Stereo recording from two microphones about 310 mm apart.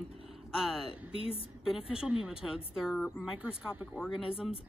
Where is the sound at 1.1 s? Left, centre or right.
Centre.